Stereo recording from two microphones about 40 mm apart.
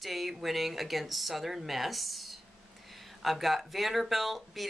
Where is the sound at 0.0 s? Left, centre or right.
Centre.